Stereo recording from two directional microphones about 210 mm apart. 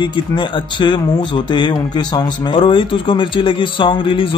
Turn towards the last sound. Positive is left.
turn(degrees=25)  # may be behind; listen again after turning